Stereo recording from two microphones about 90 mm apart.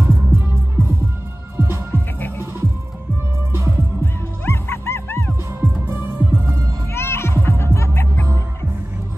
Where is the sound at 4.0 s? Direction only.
25° left (ahead or behind).